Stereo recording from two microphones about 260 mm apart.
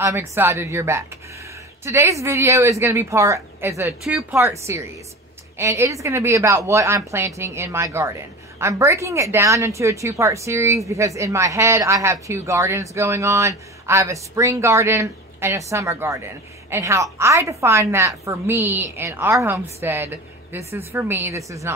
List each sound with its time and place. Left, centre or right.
0.0 s a woman's voice: centre